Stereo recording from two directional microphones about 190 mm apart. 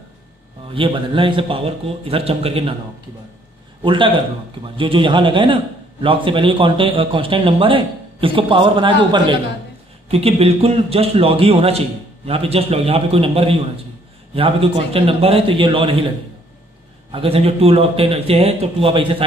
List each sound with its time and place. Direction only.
0.7 s a man's voice: 25° right (ahead or behind)
3.8 s a man's voice: 25° right (ahead or behind)
17.1 s a man's voice: 30° right (ahead or behind)